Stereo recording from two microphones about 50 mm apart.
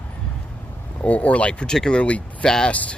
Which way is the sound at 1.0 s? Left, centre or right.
Left.